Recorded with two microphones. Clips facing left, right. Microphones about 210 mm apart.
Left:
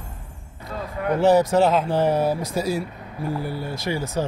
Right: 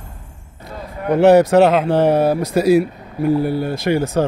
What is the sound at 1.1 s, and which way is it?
Speech, 70° right (ahead or behind).